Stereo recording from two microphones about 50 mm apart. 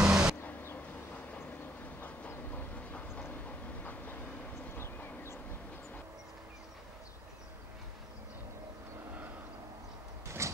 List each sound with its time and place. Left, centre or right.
0.0 s vehicle: centre
2.0 s train: left
10.2 s sliding door: right